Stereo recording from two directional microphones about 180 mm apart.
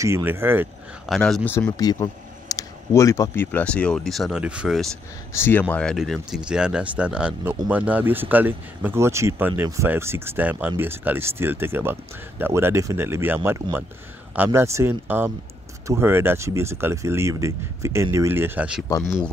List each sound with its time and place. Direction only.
0.0 s speech: 15° right (ahead or behind)
1.0 s speech: centre (ahead or behind)
1.8 s speech: 20° left (ahead or behind); by 4.8 s 5° right (ahead or behind)
5.3 s speech: 10° left (ahead or behind); by 18.9 s 5° right (ahead or behind)
18.9 s speech: 15° left (ahead or behind)